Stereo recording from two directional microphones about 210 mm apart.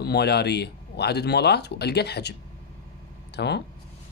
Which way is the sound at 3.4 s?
55° left (ahead or behind).